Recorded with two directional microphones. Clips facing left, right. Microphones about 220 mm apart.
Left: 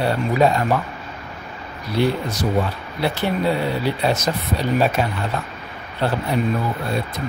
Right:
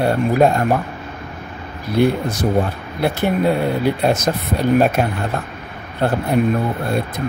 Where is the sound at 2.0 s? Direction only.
50° right (ahead or behind).